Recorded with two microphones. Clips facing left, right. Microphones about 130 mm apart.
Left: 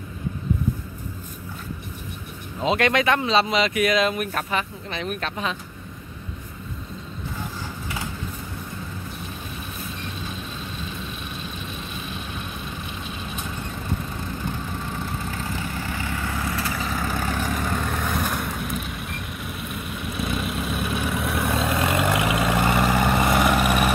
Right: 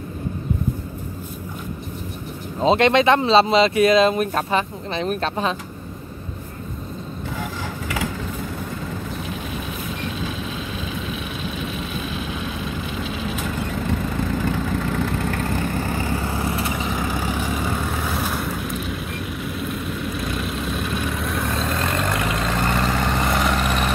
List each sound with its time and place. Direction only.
2.6 s speech: 30° right (ahead or behind)
13.0 s vehicle: 90° right; by 16.8 s 25° right (ahead or behind)
16.9 s vehicle: 10° right (ahead or behind); by 23.9 s 10° left (ahead or behind)